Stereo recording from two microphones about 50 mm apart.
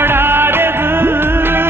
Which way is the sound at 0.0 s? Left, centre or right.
Right.